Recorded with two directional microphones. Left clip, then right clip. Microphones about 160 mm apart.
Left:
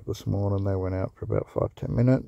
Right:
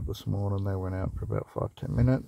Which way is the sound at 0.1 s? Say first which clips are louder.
Left 6 dB; 45° left (ahead or behind).